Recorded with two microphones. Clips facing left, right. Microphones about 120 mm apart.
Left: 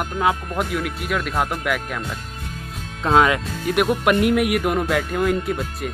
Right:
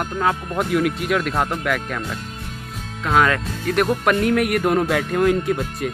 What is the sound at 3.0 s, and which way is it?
Speech, 20° left (ahead or behind).